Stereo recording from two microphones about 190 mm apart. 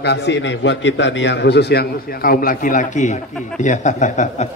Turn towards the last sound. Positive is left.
turn(degrees=40)  # may be behind; listen again after turning